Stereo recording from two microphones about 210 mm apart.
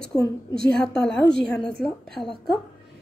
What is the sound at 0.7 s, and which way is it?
A woman's voice, 5° left (ahead or behind).